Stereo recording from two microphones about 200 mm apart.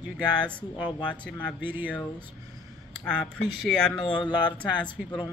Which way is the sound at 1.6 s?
10° right (ahead or behind).